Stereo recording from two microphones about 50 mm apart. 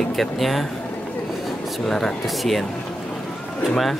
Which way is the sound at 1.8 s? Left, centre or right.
Centre.